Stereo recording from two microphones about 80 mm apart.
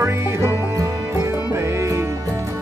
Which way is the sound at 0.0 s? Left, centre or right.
Right.